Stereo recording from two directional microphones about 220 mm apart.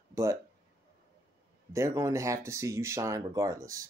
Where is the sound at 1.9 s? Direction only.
15° right (ahead or behind).